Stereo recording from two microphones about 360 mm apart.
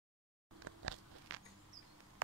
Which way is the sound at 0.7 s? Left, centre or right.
Right.